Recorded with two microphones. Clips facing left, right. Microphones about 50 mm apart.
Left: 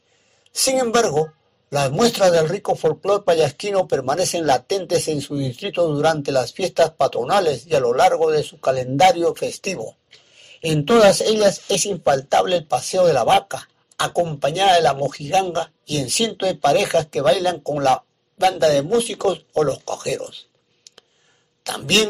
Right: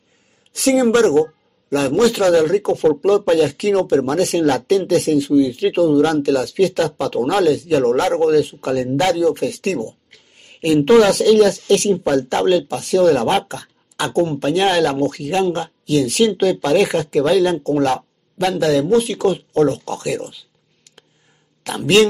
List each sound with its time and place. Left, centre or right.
0.5 s a sound: right
0.9 s speech: centre
21.6 s speech: centre